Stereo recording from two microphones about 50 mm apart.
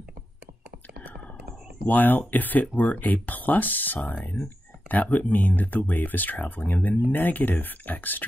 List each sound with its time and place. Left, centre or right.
1.9 s speech: left